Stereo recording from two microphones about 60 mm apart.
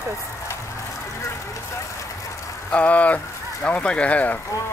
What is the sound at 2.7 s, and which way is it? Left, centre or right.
Speech, left.